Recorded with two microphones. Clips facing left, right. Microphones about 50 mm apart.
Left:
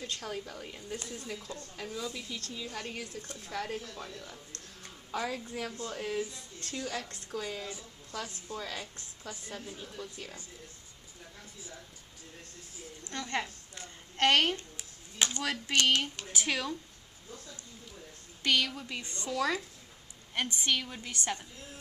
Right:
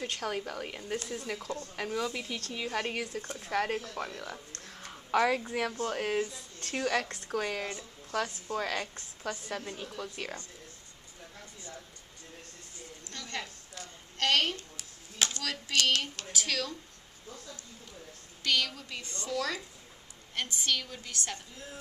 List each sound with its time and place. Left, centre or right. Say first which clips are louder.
0.0 s a woman's voice: right 4 dB; right
3.1 s speech: right 5 dB; right
3.4 s a woman's voice: right 6 dB; right
13.1 s a sound: left 5 dB; left
15.3 s speech: left 3 dB; left
18.4 s a woman's voice: left 1 dB; centre
19.0 s speech: even; left
19.3 s a woman's voice: left 2 dB; centre